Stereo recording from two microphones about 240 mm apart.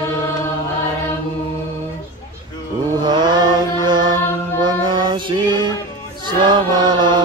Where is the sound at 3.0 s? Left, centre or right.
Centre.